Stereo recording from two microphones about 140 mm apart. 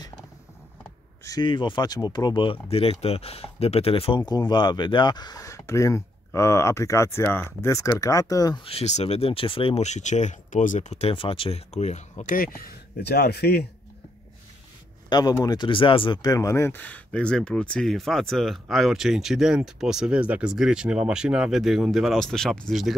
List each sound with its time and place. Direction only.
1.2 s speech: 25° left (ahead or behind); by 4.2 s 40° left (ahead or behind)
4.3 s speech: 30° left (ahead or behind)
8.6 s speech: 50° left (ahead or behind); by 12.6 s 80° left
13.4 s a man's voice: 90° left
15.0 s speech: 30° left (ahead or behind)
16.2 s speech: 25° left (ahead or behind); by 22.9 s centre (ahead or behind)